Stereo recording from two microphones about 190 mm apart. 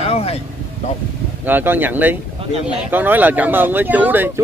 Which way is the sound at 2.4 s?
30° right (ahead or behind).